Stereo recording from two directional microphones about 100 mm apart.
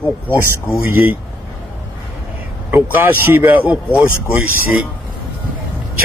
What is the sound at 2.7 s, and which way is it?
Speech, 20° right (ahead or behind).